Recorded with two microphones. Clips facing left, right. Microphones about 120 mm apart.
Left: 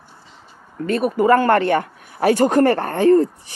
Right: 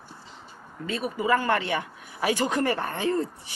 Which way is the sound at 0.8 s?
60° left (ahead or behind).